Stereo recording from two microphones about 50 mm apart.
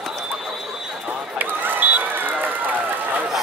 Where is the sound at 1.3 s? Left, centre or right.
Right.